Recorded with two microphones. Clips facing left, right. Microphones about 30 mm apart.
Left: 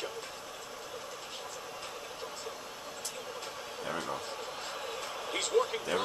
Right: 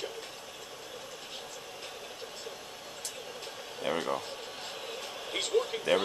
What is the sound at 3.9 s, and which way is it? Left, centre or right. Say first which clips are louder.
Speech: right 5 dB; right.